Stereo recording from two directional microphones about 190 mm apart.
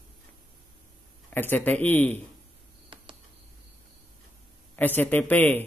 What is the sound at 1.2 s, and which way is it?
Speech, 10° left (ahead or behind).